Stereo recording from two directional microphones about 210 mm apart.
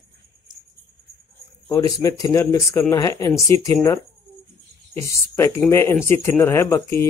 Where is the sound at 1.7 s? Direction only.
15° left (ahead or behind).